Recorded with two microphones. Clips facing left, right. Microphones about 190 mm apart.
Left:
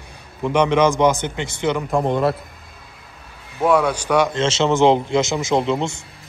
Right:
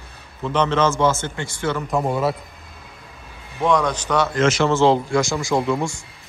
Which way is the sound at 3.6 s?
10° left (ahead or behind).